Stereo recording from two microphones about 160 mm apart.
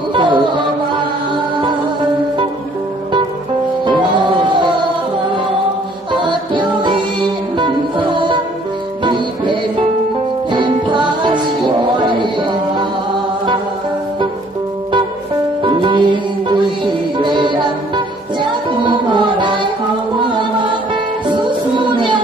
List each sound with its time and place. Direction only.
0.1 s music: 30° right (ahead or behind)
3.8 s music: 30° right (ahead or behind)
6.2 s music: 30° right (ahead or behind)
15.6 s music: 30° right (ahead or behind)